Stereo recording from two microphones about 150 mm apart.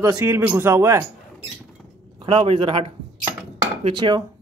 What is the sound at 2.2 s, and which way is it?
A man's voice, 35° right (ahead or behind).